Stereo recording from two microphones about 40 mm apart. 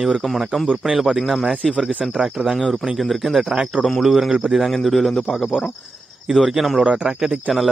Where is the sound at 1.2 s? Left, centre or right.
Centre.